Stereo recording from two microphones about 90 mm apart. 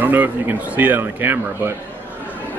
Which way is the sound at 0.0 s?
20° right (ahead or behind).